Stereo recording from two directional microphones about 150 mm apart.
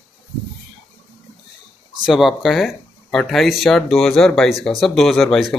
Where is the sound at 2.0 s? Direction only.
Centre (ahead or behind).